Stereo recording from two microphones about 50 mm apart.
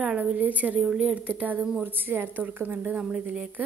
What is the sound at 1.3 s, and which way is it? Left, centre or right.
Speech, right.